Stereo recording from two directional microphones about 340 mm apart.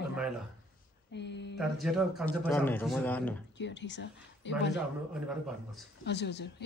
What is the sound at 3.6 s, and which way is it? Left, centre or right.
Speech, left.